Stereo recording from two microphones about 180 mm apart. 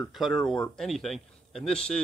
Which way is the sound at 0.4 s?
5° left (ahead or behind).